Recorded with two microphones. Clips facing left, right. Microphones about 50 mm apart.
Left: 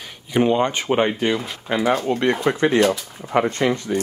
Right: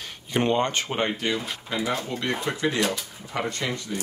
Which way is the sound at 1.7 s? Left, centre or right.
Left.